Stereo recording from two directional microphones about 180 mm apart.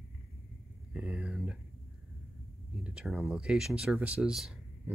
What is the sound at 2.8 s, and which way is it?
Speech, 5° right (ahead or behind).